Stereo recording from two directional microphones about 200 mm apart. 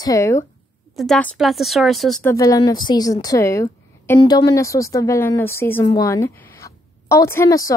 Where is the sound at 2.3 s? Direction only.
20° left (ahead or behind).